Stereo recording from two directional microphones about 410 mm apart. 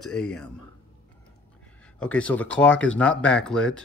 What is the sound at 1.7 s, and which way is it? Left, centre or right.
Speech, centre.